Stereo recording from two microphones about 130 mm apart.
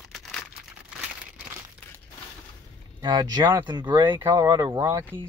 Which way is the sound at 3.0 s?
35° right (ahead or behind).